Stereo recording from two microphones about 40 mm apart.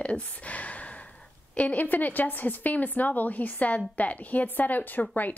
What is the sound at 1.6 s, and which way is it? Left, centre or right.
A woman's voice, left.